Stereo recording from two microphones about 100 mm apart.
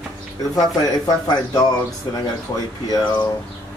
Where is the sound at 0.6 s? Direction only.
40° left (ahead or behind).